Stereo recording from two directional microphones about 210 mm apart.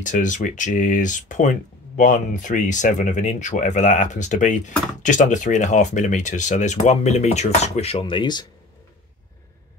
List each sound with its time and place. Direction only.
0.0 s speech: 35° left (ahead or behind); by 8.5 s 20° left (ahead or behind)